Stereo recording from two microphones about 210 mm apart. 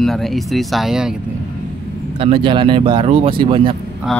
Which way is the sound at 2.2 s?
25° right (ahead or behind).